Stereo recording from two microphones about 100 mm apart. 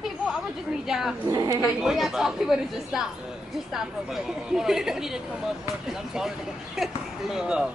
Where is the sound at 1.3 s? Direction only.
40° right (ahead or behind).